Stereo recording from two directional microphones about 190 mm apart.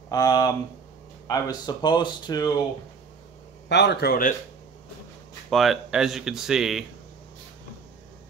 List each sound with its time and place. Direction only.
0.1 s speech: 20° left (ahead or behind)
3.6 s a man's voice: 65° left (ahead or behind)
5.5 s speech: centre (ahead or behind)